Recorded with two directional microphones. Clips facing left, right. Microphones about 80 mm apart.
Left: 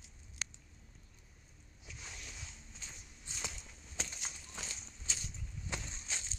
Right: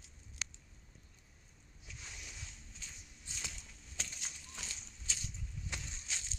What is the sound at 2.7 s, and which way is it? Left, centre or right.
Walk, left.